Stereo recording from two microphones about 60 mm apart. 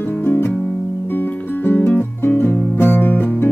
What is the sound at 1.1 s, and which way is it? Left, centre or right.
Music, left.